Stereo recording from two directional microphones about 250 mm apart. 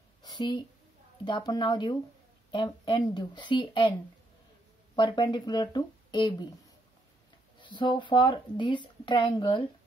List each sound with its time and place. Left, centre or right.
0.2 s a sound: centre
1.2 s speech: centre
4.9 s speech: centre
7.6 s speech: centre